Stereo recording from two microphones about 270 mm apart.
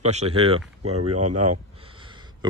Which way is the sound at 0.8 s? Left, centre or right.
Right.